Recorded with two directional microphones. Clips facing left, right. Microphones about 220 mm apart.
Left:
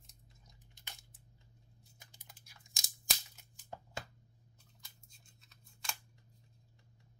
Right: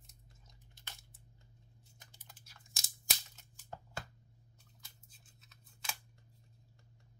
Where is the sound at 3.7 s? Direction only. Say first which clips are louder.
Even; 15° left (ahead or behind).